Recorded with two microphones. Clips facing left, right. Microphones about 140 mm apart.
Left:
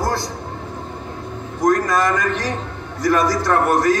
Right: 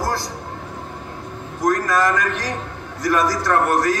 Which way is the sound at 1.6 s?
20° left (ahead or behind).